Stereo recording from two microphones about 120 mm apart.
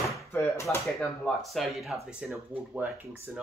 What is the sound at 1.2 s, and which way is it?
Speech, centre (ahead or behind).